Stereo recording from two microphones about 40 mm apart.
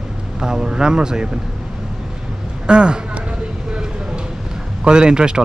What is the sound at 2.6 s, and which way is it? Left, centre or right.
Speech, right.